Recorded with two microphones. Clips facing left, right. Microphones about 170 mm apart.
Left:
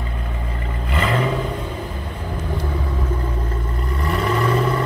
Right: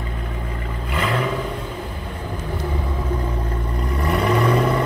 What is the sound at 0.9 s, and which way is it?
Vehicle, centre (ahead or behind).